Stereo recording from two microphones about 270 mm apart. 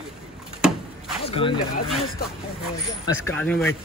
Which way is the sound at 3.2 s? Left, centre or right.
Centre.